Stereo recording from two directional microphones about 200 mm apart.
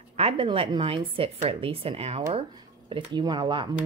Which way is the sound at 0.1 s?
30° right (ahead or behind).